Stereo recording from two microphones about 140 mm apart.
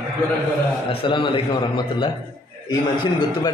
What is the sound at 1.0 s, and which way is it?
A man's voice, 35° left (ahead or behind).